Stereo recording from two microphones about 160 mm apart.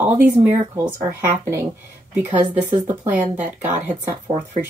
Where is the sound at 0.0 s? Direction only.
10° right (ahead or behind).